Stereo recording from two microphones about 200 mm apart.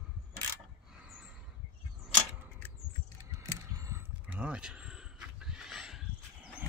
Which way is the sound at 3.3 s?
15° right (ahead or behind).